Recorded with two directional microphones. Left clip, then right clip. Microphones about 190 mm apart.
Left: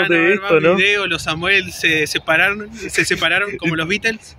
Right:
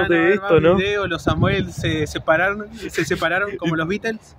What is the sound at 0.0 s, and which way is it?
Speech, 5° right (ahead or behind).